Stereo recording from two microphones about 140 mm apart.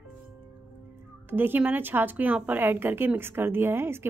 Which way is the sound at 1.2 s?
15° right (ahead or behind).